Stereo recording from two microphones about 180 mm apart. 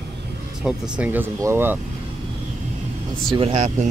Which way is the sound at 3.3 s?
25° right (ahead or behind).